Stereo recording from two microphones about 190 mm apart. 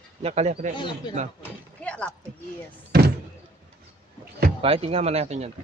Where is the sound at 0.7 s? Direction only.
25° left (ahead or behind).